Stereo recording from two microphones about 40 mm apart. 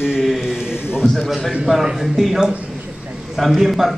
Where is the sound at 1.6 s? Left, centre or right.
Centre.